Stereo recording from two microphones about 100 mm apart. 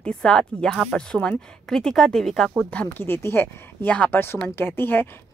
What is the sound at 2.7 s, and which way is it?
Speech, 15° left (ahead or behind).